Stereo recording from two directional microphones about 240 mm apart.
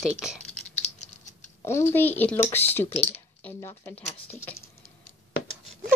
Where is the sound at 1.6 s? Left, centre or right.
Centre.